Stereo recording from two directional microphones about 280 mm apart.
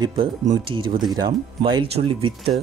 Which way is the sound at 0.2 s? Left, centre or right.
Centre.